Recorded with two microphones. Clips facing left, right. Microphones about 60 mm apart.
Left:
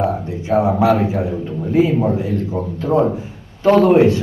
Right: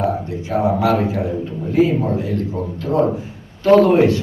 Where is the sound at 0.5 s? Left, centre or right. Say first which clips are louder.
Left 3 dB; left.